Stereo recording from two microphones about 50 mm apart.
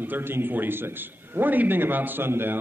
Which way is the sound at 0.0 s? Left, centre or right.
Right.